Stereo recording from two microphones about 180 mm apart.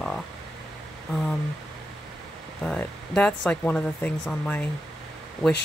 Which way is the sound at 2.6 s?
5° left (ahead or behind).